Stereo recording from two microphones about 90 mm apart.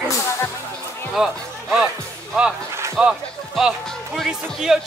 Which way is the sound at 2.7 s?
30° right (ahead or behind).